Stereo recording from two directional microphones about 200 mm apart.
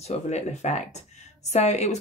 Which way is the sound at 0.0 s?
35° left (ahead or behind).